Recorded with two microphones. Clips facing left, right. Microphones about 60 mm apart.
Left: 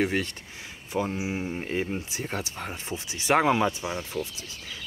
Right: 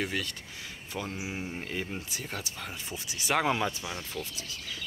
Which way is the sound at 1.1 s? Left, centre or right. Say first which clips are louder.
Left 6 dB; centre.